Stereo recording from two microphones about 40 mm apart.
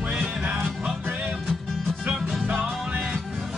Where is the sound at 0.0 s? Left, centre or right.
Right.